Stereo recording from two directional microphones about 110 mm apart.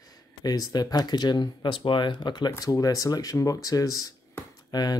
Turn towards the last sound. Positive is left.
turn(degrees=40)  # may be behind; listen again after turning